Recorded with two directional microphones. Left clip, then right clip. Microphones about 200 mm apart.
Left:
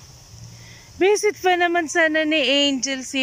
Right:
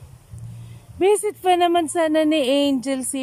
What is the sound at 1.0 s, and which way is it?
Speech, 5° right (ahead or behind).